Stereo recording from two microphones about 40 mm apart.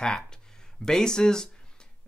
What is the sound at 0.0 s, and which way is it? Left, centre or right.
Speech, centre.